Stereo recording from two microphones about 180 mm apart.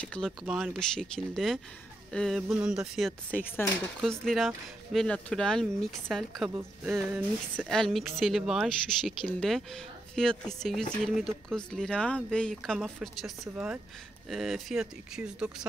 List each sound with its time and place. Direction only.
0.0 s speech: 5° left (ahead or behind)
7.6 s speech: centre (ahead or behind)